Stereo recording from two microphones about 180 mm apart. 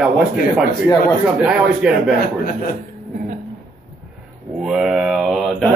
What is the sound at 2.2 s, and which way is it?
Speech, 50° left (ahead or behind).